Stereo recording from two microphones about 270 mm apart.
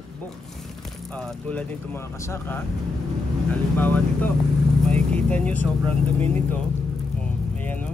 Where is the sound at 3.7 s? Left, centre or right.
Centre.